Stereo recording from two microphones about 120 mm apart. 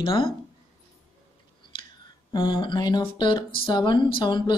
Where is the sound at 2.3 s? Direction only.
40° left (ahead or behind).